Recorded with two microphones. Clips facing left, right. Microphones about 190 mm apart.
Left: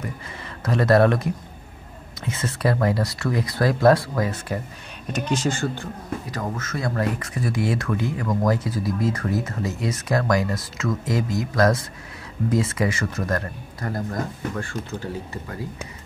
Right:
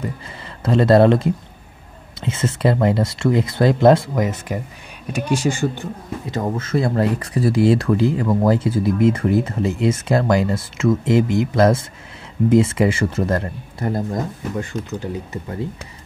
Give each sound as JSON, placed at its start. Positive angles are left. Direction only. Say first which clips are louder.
{"t": 0.7, "sound": "speech", "louder": "right 5 dB", "side_deg": -25}
{"t": 6.3, "sound": "speech", "louder": "right 11 dB", "side_deg": -25}